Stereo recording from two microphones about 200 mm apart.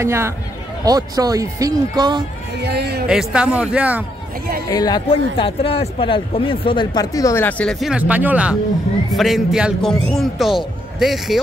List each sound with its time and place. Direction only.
0.0 s speech: 15° right (ahead or behind)
2.5 s speech: 55° right (ahead or behind)
3.1 s speech: 5° right (ahead or behind)
4.6 s speech: 20° left (ahead or behind); by 11.3 s centre (ahead or behind)